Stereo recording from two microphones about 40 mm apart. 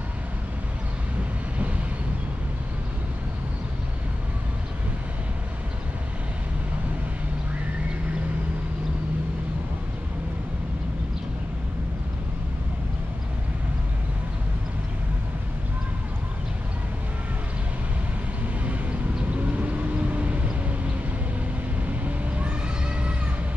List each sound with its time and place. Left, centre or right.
19.3 s vehicle: right